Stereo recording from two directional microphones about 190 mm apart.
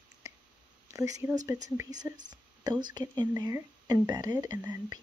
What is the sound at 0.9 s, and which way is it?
Speech, 15° right (ahead or behind).